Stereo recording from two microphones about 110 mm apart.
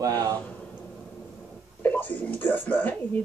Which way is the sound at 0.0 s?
35° right (ahead or behind).